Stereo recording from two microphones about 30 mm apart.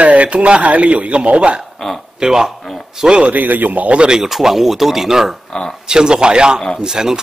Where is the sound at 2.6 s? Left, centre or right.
Centre.